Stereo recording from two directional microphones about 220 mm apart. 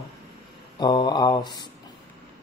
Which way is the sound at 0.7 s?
20° left (ahead or behind).